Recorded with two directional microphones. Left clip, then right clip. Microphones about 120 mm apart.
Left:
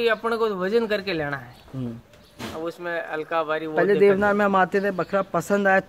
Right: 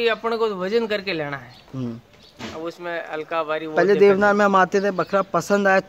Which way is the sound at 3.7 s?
55° right (ahead or behind).